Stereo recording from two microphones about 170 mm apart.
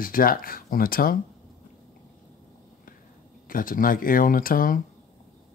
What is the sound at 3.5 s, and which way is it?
Speech, 55° left (ahead or behind).